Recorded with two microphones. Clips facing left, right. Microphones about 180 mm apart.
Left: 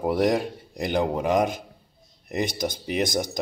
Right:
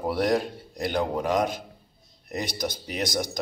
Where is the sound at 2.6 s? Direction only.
50° left (ahead or behind).